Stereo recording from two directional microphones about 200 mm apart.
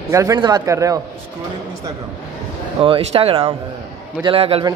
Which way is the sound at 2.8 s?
30° right (ahead or behind).